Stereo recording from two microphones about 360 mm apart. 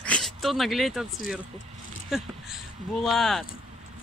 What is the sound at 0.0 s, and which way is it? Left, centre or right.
Speech, centre.